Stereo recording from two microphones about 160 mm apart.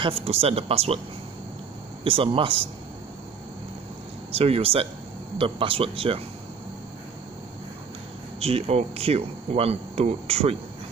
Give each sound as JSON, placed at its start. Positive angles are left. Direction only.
{"t": 0.0, "sound": "speech", "side_deg": -40}
{"t": 2.0, "sound": "speech", "side_deg": -35}
{"t": 4.3, "sound": "speech", "side_deg": -40}
{"t": 8.4, "sound": "speech", "side_deg": -40}